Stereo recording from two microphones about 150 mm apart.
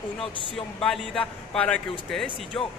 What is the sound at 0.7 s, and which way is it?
Speech, 5° left (ahead or behind).